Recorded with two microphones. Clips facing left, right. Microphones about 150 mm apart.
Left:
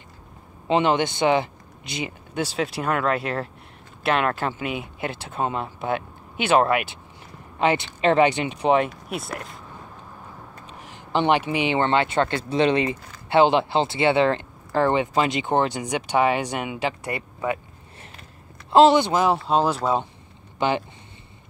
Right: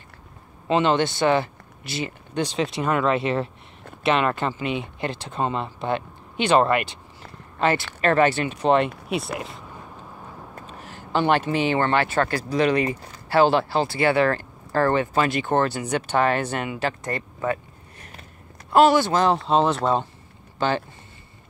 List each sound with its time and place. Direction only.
0.7 s speech: 15° left (ahead or behind)
9.1 s speech: centre (ahead or behind)
10.7 s speech: 15° left (ahead or behind)
18.7 s speech: 25° left (ahead or behind)
19.4 s speech: 5° left (ahead or behind)
20.5 s speech: 15° left (ahead or behind)